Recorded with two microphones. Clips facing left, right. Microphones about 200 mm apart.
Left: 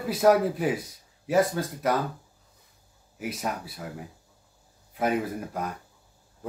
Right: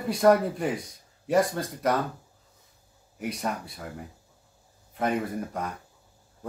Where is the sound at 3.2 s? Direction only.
5° left (ahead or behind).